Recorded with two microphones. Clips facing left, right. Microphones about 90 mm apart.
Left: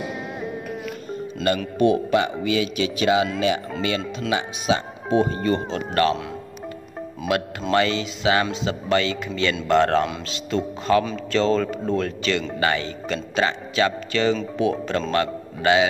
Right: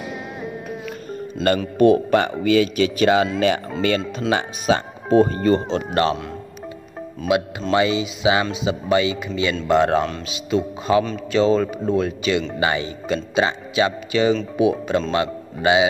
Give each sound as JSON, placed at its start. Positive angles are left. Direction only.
{"t": 1.8, "sound": "a man's voice", "side_deg": -50}
{"t": 7.3, "sound": "speech", "side_deg": -15}